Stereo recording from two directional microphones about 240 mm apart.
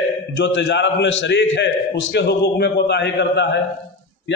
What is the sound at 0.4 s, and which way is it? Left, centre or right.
A man's voice, left.